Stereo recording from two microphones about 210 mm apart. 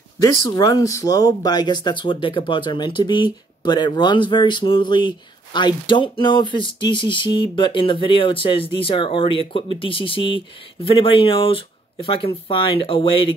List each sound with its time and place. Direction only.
0.2 s speech: 20° left (ahead or behind)